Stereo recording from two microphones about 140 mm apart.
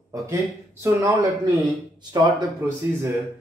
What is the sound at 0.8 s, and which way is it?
Speech, 25° right (ahead or behind).